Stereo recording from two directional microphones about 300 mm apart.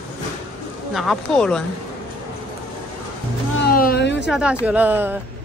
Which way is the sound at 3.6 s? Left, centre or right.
Left.